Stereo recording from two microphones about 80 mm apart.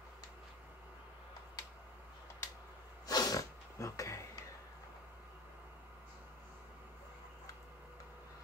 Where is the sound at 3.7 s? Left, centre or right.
Left.